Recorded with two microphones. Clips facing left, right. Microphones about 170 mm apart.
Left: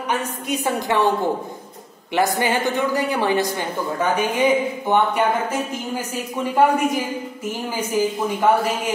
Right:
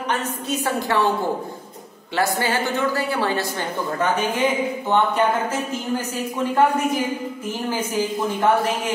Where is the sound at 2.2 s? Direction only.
15° left (ahead or behind).